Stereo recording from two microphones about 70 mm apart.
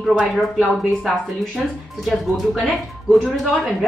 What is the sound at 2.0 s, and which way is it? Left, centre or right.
A woman's voice, centre.